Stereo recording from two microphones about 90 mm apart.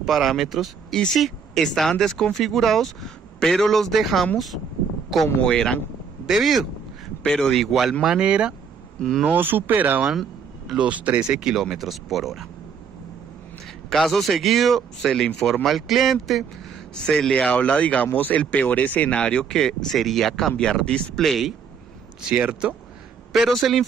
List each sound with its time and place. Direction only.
0.0 s speech: centre (ahead or behind)
5.4 s speech: 10° left (ahead or behind)
13.8 s speech: 5° left (ahead or behind)
22.2 s speech: 15° right (ahead or behind)
23.3 s speech: centre (ahead or behind)